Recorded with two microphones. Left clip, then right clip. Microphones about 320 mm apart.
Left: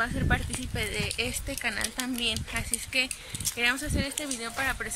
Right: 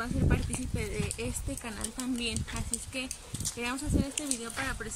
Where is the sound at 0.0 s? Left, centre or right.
Centre.